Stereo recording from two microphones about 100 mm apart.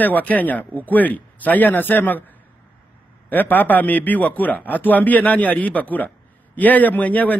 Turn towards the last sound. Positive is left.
turn(degrees=15)  # may be behind; listen again after turning